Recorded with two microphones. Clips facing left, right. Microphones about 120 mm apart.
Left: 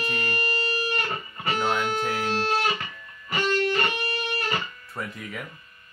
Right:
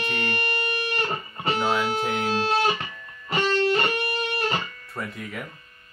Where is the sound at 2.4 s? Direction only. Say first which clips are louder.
Right 2 dB; 30° right (ahead or behind).